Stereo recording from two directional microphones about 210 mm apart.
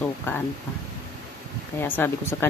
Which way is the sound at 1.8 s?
10° left (ahead or behind).